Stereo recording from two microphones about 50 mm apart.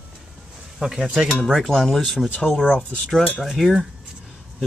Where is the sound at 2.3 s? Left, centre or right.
Left.